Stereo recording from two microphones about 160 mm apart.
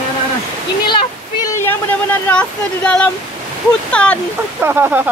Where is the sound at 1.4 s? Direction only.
10° left (ahead or behind).